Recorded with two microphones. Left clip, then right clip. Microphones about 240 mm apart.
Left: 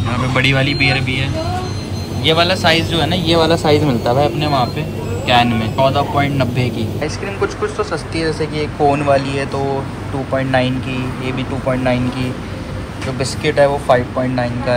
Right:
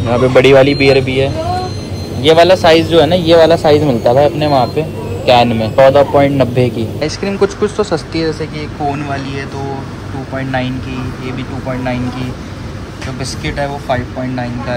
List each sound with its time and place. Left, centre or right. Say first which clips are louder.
0.1 s a man's voice: right 9 dB; centre
7.0 s speech: right 6 dB; right
8.5 s a man's voice: left 4 dB; centre